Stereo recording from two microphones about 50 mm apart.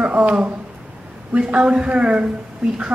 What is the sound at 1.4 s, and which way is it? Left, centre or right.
Speech, right.